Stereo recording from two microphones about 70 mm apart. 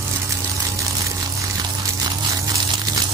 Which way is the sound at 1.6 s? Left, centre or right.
Right.